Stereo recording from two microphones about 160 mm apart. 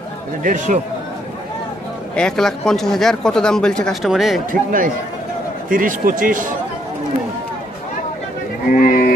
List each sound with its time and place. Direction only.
0.4 s speech: 55° right (ahead or behind)
2.1 s speech: 5° left (ahead or behind)
4.5 s speech: 60° right (ahead or behind)
8.7 s a sound: 65° left (ahead or behind)